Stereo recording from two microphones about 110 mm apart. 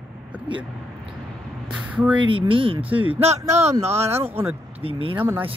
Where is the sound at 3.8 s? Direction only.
70° right (ahead or behind).